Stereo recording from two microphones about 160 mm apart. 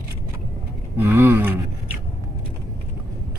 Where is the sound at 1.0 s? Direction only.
15° right (ahead or behind).